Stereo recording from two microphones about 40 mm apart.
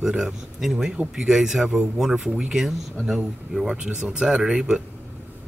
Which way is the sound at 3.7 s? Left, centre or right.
Right.